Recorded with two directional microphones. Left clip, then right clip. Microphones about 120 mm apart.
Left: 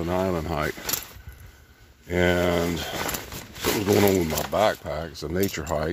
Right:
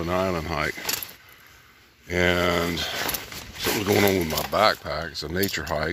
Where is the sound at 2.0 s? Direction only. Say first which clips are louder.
Even; 30° left (ahead or behind).